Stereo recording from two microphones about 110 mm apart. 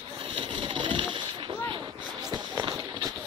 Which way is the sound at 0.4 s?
50° right (ahead or behind).